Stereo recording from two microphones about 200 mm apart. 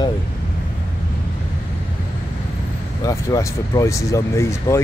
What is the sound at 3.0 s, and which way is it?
Speech, 15° left (ahead or behind).